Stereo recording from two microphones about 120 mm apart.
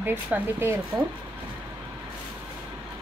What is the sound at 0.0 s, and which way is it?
Speech, 20° right (ahead or behind).